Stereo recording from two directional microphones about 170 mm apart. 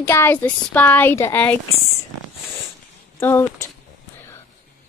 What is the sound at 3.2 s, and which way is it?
Speech, 15° left (ahead or behind).